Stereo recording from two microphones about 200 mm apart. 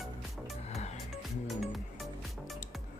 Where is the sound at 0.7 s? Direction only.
35° left (ahead or behind).